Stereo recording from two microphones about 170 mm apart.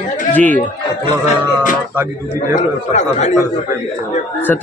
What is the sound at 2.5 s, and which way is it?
Speech, 45° left (ahead or behind).